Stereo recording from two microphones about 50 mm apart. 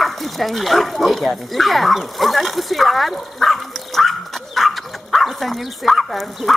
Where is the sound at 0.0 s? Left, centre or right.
Centre.